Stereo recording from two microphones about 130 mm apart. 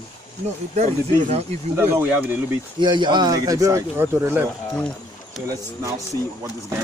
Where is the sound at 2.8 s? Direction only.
35° right (ahead or behind); by 4.5 s 20° right (ahead or behind).